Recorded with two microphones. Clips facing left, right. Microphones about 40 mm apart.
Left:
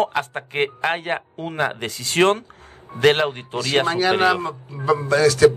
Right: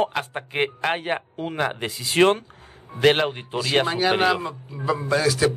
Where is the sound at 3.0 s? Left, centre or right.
Centre.